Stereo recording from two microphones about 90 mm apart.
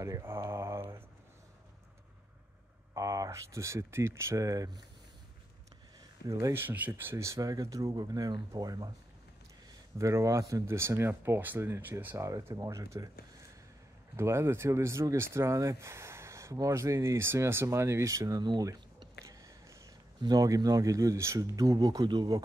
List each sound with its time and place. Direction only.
0.0 s speech: 30° right (ahead or behind)
2.9 s speech: 40° right (ahead or behind)
6.5 s speech: 20° right (ahead or behind); by 8.9 s 45° right (ahead or behind)
9.9 s speech: 35° right (ahead or behind)
12.3 s speech: 35° right (ahead or behind)
14.1 s speech: 30° right (ahead or behind)
19.2 s a sound: 35° right (ahead or behind)
20.2 s speech: 45° right (ahead or behind)